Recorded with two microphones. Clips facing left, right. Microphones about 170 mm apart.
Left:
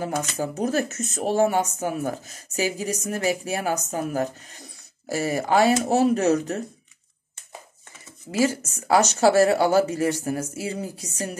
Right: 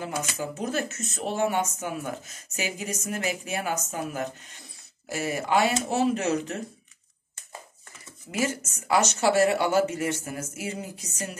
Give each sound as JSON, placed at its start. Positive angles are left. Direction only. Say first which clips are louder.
{"t": 0.0, "sound": "speech", "louder": "left 5 dB", "side_deg": 40}
{"t": 8.3, "sound": "speech", "louder": "left 6 dB", "side_deg": 35}